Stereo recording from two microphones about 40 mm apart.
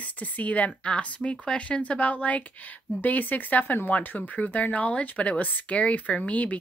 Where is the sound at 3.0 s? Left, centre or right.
Left.